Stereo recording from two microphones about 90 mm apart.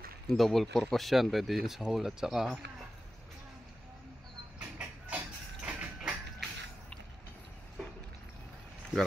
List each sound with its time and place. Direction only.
0.3 s speech: centre (ahead or behind)
4.6 s mechanisms: 15° right (ahead or behind)